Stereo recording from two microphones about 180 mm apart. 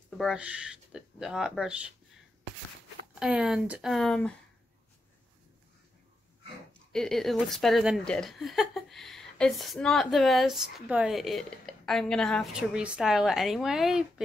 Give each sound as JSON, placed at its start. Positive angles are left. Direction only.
{"t": 0.2, "sound": "speech", "side_deg": -5}
{"t": 3.2, "sound": "speech", "side_deg": -5}
{"t": 6.9, "sound": "speech", "side_deg": 0}